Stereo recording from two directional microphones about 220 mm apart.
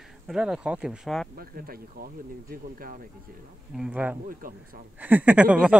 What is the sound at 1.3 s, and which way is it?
Speech, 40° right (ahead or behind).